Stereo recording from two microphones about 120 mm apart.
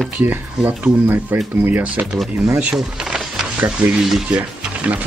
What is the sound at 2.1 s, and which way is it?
Speech, centre (ahead or behind).